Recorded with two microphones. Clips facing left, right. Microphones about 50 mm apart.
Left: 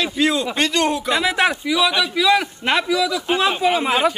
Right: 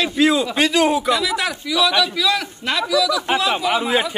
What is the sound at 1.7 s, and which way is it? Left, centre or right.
A man's voice, centre.